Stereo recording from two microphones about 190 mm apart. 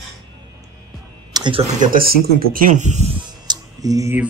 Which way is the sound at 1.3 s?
25° right (ahead or behind).